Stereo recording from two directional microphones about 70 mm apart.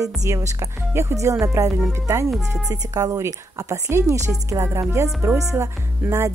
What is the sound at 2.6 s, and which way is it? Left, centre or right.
A woman's voice, right.